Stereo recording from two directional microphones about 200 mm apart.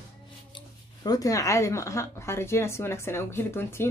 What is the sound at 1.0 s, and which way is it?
Speech, 20° left (ahead or behind).